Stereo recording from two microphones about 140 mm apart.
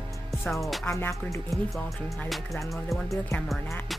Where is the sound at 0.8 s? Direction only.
20° left (ahead or behind).